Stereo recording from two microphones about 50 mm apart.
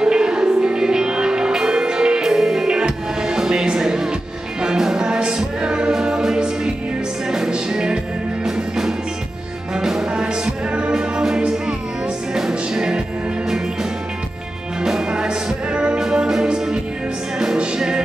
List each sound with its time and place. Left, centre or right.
0.0 s music: centre
14.8 s music: centre
17.7 s music: centre